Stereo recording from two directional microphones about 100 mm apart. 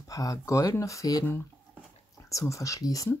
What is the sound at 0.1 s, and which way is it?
Speech, 35° left (ahead or behind).